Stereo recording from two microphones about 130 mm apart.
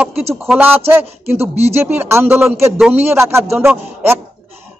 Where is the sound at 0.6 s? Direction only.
15° right (ahead or behind).